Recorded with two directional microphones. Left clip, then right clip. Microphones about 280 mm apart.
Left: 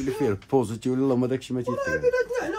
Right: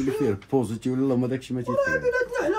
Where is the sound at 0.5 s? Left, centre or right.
Left.